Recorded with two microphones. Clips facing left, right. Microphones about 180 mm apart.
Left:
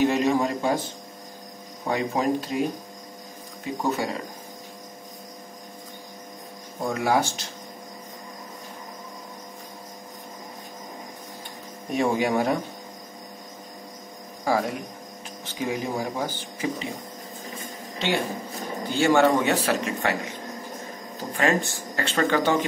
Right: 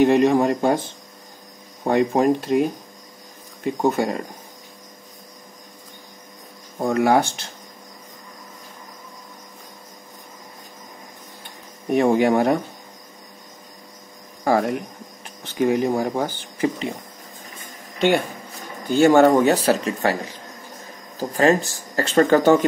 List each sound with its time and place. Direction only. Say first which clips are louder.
0.0 s a man's voice: right 6 dB; 55° right (ahead or behind)
1.9 s speech: right 7 dB; 50° right (ahead or behind)
3.9 s speech: right 5 dB; 50° right (ahead or behind)
6.9 s a man's voice: right 6 dB; 60° right (ahead or behind)
11.9 s a man's voice: right 6 dB; 55° right (ahead or behind)
14.4 s speech: right 5 dB; 55° right (ahead or behind)
17.9 s speech: right 7 dB; 55° right (ahead or behind)